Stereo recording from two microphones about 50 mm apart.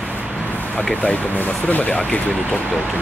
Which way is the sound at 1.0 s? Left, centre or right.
Left.